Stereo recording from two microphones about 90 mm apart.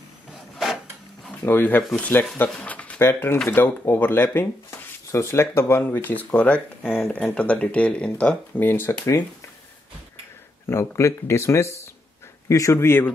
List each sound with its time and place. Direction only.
1.4 s speech: 25° left (ahead or behind)
1.8 s speech: 15° left (ahead or behind)
2.6 s a sound: 15° left (ahead or behind)
3.1 s speech: 25° left (ahead or behind)
10.7 s speech: 30° left (ahead or behind)